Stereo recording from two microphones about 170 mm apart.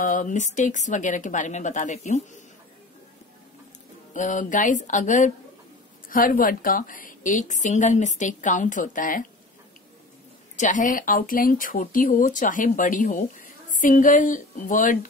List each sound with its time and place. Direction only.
0.0 s a woman's voice: 50° left (ahead or behind)
4.1 s a woman's voice: 45° left (ahead or behind)
10.5 s a woman's voice: 45° left (ahead or behind)